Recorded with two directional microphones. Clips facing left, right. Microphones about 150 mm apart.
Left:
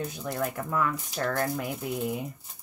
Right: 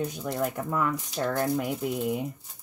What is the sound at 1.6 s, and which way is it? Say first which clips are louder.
Speech: right 3 dB; centre (ahead or behind).